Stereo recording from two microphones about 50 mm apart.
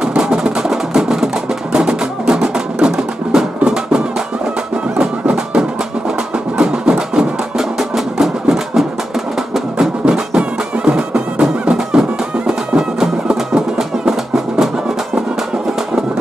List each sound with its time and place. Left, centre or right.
0.2 s music: centre
5.3 s music: centre